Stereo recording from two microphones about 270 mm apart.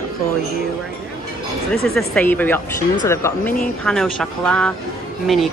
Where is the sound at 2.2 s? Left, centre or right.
Centre.